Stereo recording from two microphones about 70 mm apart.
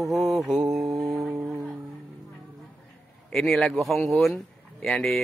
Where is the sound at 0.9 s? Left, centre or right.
Right.